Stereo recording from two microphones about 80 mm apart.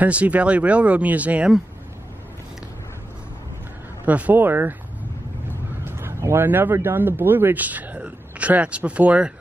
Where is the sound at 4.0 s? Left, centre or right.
Centre.